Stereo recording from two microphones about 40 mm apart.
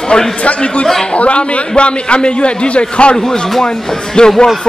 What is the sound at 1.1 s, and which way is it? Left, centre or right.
A man's voice, left.